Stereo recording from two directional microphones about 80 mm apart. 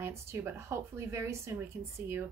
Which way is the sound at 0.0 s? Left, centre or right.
Right.